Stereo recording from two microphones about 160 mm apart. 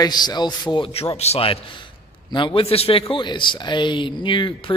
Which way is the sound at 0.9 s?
40° left (ahead or behind).